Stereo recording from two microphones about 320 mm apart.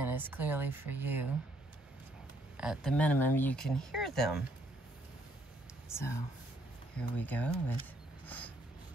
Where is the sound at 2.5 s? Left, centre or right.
Centre.